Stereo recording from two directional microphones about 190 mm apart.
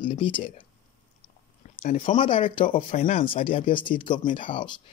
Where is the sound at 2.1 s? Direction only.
25° left (ahead or behind).